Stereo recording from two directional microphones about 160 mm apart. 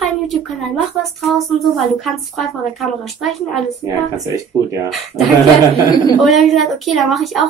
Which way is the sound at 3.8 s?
20° right (ahead or behind).